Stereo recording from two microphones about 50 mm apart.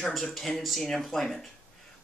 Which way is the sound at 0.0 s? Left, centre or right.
Centre.